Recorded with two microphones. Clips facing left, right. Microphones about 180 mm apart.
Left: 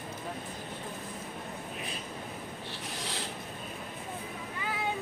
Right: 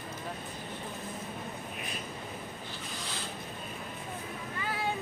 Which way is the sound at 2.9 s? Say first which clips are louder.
Left 3 dB; 75° left (ahead or behind).